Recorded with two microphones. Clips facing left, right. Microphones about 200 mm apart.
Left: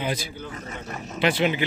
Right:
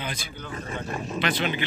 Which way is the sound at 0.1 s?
35° left (ahead or behind).